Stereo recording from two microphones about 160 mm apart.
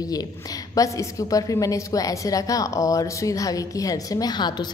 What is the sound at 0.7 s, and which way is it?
A woman's voice, 20° left (ahead or behind).